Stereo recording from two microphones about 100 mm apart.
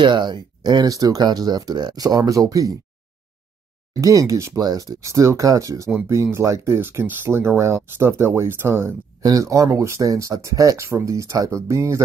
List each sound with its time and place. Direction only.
0.0 s speech: 50° right (ahead or behind)
4.0 s speech: 35° right (ahead or behind)